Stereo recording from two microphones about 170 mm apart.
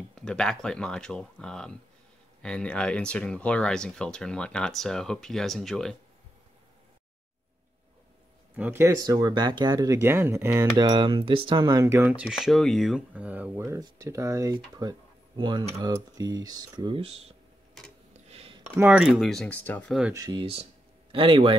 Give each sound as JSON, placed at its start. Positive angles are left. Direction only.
{"t": 0.1, "sound": "speech", "side_deg": 5}
{"t": 8.5, "sound": "speech", "side_deg": -10}
{"t": 10.8, "sound": "speech", "side_deg": -25}
{"t": 18.1, "sound": "a sound", "side_deg": -35}
{"t": 18.8, "sound": "speech", "side_deg": -5}
{"t": 20.1, "sound": "speech", "side_deg": -20}
{"t": 21.1, "sound": "speech", "side_deg": -30}